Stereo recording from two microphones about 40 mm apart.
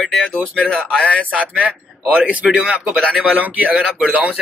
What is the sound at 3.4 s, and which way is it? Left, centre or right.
Speech, right.